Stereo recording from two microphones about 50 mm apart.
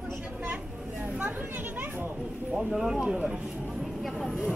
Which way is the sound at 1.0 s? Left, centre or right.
Right.